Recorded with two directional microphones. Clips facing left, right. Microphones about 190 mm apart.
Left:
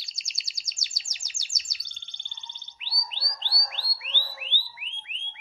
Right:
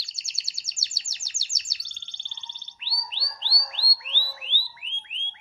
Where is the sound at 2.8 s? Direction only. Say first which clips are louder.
Right 1 dB; 15° left (ahead or behind).